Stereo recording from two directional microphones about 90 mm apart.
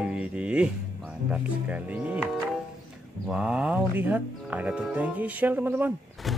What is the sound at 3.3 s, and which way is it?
Speech, 10° right (ahead or behind).